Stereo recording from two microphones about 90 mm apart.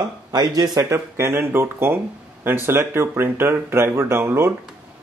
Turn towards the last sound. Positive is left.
turn(degrees=-30)  # may be behind; listen again after turning